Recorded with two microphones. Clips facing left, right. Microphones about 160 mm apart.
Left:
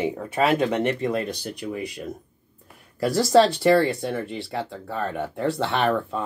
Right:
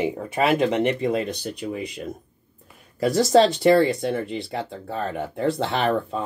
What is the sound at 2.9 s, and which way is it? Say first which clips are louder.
Speech: right 2 dB; 20° right (ahead or behind).